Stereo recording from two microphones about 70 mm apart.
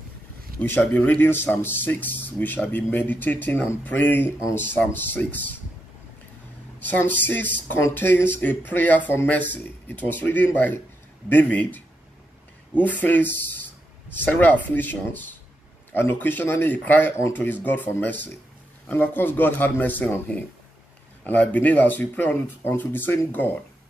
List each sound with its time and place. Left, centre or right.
0.6 s speech: left
7.0 s speech: left